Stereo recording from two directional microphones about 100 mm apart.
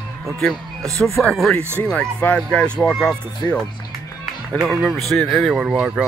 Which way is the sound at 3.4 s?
20° left (ahead or behind).